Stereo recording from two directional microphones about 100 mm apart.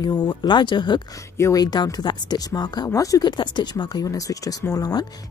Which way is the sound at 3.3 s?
50° left (ahead or behind).